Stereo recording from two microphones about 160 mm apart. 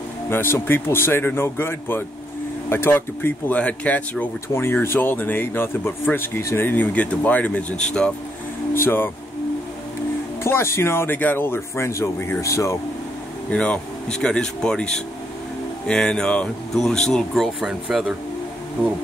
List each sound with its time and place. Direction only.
0.3 s speech: 15° left (ahead or behind)
10.4 s speech: 15° left (ahead or behind)
13.5 s speech: 5° left (ahead or behind)